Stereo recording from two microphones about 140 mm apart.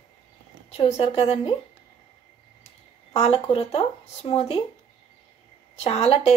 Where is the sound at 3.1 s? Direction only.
45° left (ahead or behind).